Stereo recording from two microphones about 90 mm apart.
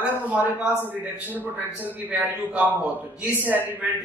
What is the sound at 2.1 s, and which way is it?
A man's voice, 20° right (ahead or behind).